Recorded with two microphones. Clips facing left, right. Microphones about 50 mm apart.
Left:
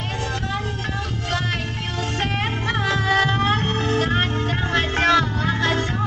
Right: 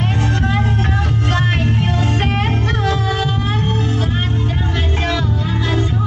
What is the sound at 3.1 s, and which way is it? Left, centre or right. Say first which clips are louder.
Music: left 1 dB; left.